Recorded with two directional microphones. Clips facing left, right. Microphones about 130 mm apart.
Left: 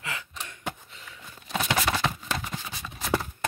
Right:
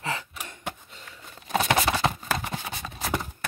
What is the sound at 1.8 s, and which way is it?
Clip-clop, 35° right (ahead or behind).